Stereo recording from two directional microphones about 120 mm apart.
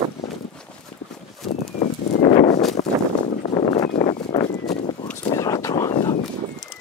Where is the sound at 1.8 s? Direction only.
90° left.